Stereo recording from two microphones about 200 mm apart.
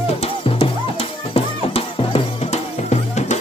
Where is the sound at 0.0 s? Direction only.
30° left (ahead or behind).